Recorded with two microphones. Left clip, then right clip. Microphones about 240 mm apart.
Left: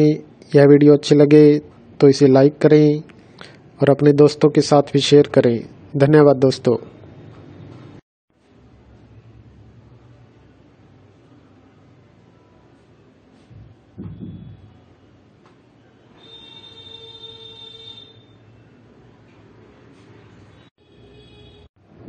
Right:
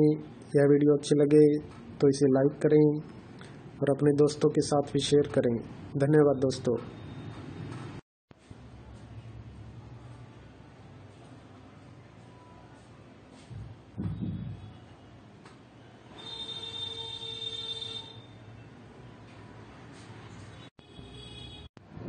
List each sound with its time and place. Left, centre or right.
0.0 s speech: left